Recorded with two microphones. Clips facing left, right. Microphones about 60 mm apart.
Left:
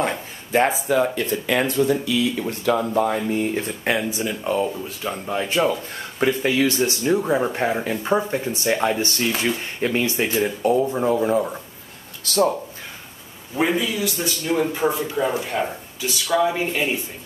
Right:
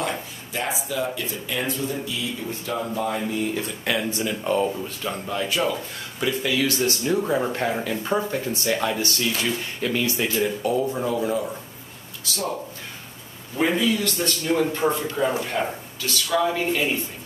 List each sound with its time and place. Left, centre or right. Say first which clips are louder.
0.5 s speech: left 10 dB; left
1.5 s speech: left 8 dB; left
3.3 s speech: left 3 dB; left
4.0 s speech: left 1 dB; centre
5.3 s speech: left 4 dB; left
6.1 s speech: left 4 dB; left
6.8 s speech: left 3 dB; centre
13.6 s a man's voice: even; centre